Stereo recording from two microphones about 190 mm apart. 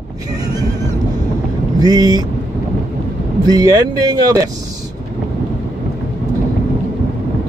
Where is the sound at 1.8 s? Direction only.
20° right (ahead or behind).